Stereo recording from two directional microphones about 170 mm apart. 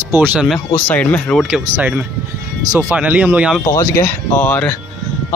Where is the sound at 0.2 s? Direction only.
5° right (ahead or behind).